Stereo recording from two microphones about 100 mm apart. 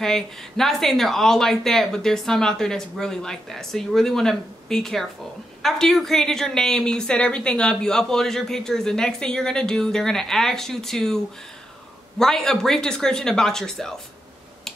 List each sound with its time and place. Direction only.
0.0 s speech: 5° left (ahead or behind)
12.2 s speech: 5° left (ahead or behind)